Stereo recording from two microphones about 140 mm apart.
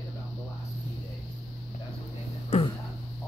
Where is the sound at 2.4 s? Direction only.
45° left (ahead or behind).